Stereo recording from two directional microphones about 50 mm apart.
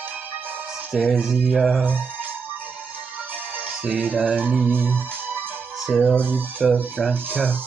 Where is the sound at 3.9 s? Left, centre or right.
Right.